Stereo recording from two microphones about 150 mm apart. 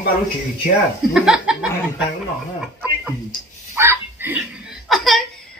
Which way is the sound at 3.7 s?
15° right (ahead or behind).